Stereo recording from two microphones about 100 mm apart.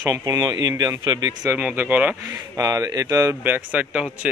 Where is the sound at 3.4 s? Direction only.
15° right (ahead or behind).